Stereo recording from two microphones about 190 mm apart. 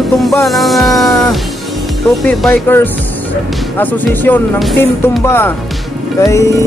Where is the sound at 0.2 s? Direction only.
Centre (ahead or behind).